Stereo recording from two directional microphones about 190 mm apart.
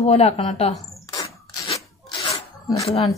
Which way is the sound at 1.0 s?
20° left (ahead or behind).